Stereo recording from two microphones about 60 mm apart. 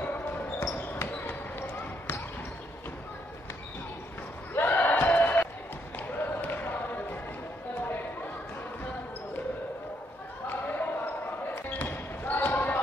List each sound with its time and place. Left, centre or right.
0.0 s basketball bounce: left
4.6 s a sound: left
5.9 s basketball bounce: left
10.4 s basketball bounce: left